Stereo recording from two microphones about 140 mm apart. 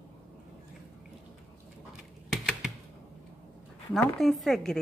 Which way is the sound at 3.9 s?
Centre (ahead or behind).